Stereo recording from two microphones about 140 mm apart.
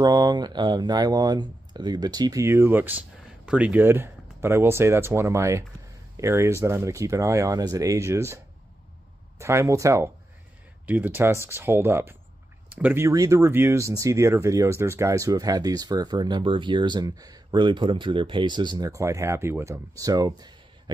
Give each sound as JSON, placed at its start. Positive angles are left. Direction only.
{"t": 0.0, "sound": "speech", "side_deg": -30}
{"t": 9.4, "sound": "speech", "side_deg": -20}